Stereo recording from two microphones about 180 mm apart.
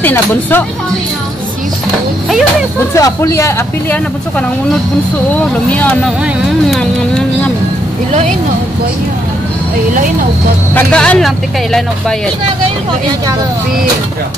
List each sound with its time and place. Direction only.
0.0 s speech: 10° left (ahead or behind)
2.9 s speech: 15° left (ahead or behind)
10.7 s speech: 5° left (ahead or behind)